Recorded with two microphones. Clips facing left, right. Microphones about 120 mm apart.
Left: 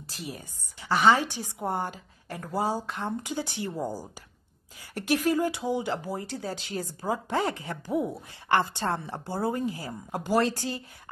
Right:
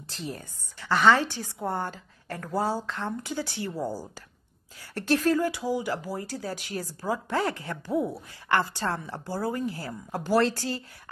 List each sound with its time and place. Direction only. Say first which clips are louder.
0.0 s a woman's voice: right 2 dB; 10° left (ahead or behind)